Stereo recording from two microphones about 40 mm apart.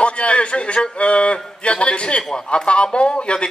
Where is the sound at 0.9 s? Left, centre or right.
Left.